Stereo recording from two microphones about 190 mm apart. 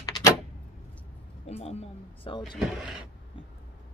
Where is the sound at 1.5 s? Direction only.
35° left (ahead or behind).